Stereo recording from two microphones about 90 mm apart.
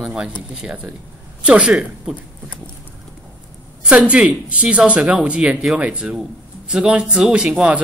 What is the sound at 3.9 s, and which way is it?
A man's voice, 15° right (ahead or behind).